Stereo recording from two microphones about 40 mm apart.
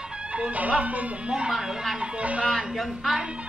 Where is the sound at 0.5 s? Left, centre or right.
Right.